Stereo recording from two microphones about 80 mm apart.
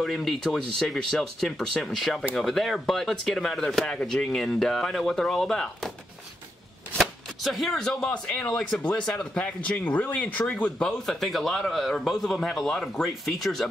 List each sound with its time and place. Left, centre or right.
0.0 s speech: centre
7.0 s speech: centre